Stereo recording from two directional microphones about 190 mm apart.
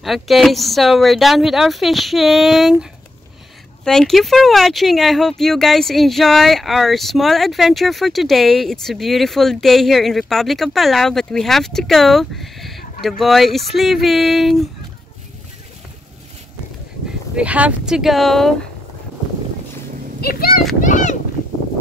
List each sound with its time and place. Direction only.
0.0 s speech: centre (ahead or behind)
3.8 s speech: centre (ahead or behind)
17.4 s speech: 5° right (ahead or behind)
20.2 s a child's voice: 50° left (ahead or behind)
20.8 s a sound: 40° left (ahead or behind)